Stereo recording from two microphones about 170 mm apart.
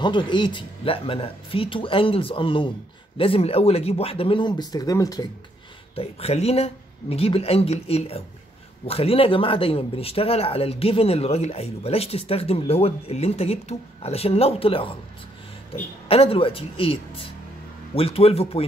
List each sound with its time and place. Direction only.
0.0 s speech: 25° left (ahead or behind)
5.9 s speech: 35° left (ahead or behind)
16.1 s speech: 35° left (ahead or behind)